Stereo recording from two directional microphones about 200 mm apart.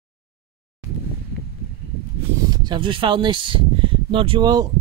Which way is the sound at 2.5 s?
20° right (ahead or behind).